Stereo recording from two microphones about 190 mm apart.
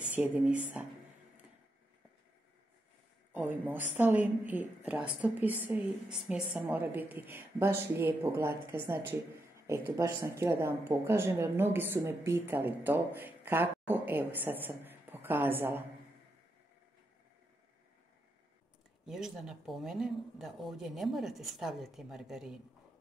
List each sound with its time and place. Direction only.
0.1 s speech: 5° right (ahead or behind)
3.6 s speech: 10° right (ahead or behind)
19.0 s speech: centre (ahead or behind)